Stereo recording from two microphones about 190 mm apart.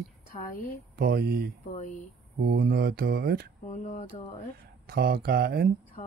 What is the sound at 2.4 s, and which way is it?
Speech, 55° right (ahead or behind).